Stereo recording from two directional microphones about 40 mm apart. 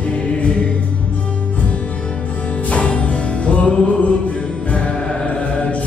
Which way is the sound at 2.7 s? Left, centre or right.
Left.